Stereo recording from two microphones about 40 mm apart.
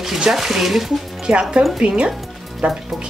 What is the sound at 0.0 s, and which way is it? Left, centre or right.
Speech, centre.